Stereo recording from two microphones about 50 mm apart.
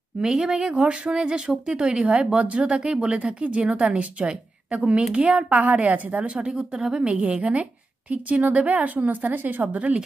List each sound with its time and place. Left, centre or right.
0.2 s speech: centre
6.5 s speech: centre; by 9.9 s right